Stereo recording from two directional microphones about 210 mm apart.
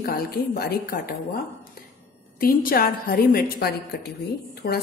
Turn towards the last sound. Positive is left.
turn(degrees=50)  # may be behind; listen again after turning